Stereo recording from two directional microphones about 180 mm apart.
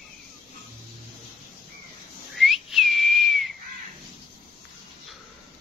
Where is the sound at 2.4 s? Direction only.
Centre (ahead or behind).